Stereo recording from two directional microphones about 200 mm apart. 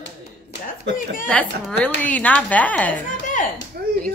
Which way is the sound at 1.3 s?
5° left (ahead or behind).